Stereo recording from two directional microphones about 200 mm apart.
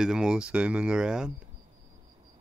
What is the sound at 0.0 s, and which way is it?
Speech, 5° right (ahead or behind).